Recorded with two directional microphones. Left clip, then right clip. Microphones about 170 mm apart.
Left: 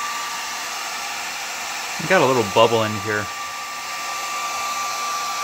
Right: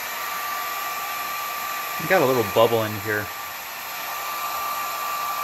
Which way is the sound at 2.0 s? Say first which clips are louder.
Left 3 dB; 15° left (ahead or behind).